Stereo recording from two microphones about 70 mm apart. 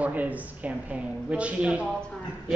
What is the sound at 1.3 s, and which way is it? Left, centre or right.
Speech, centre.